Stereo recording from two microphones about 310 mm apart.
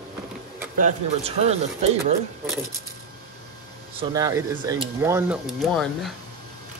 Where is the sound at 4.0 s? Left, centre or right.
Centre.